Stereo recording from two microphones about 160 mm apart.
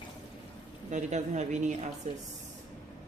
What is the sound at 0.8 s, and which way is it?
Speech, 50° right (ahead or behind).